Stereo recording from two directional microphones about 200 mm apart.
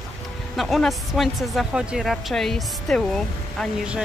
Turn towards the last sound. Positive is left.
turn(degrees=0)  # may be behind; listen again after turning